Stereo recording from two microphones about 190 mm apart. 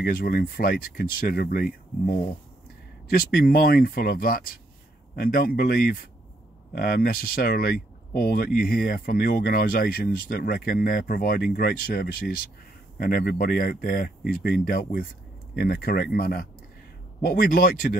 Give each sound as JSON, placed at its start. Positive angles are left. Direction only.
{"t": 0.0, "sound": "speech", "side_deg": 50}